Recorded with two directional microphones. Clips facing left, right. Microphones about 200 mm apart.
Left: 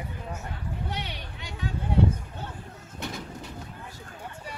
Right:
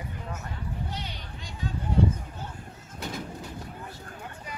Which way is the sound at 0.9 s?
65° left (ahead or behind).